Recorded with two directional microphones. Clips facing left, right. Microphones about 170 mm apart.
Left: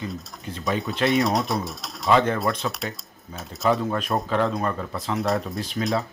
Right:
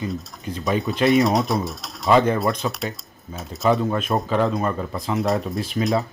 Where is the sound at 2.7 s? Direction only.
Centre (ahead or behind).